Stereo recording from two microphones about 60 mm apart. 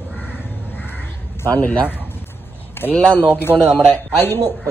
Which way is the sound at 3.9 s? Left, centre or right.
Left.